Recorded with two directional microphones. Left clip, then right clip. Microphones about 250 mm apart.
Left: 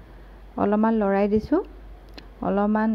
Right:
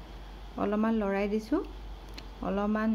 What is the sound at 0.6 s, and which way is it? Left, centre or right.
Speech, left.